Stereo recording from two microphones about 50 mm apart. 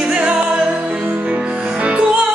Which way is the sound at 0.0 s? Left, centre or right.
Right.